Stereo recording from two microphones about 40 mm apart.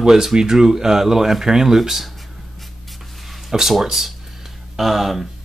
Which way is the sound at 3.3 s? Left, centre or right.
Centre.